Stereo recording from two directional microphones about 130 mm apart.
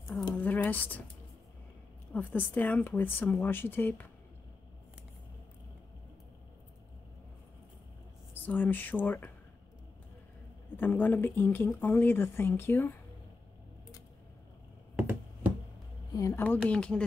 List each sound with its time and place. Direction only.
0.4 s a sound: 15° left (ahead or behind)
2.1 s speech: 15° left (ahead or behind)
8.5 s speech: 15° left (ahead or behind)
10.8 s speech: 15° left (ahead or behind)
15.0 s a sound: 15° right (ahead or behind)
16.1 s speech: 25° left (ahead or behind)
16.4 s speech: 10° left (ahead or behind)